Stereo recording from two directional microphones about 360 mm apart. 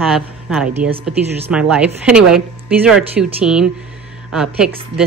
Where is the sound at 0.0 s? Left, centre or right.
Centre.